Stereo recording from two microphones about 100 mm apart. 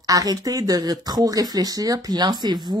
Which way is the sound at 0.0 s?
35° right (ahead or behind).